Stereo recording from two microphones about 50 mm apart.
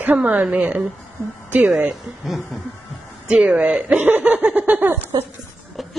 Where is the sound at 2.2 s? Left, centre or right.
Centre.